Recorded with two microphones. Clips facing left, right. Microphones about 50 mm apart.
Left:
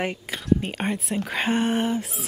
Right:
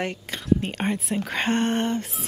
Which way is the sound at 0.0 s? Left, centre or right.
Centre.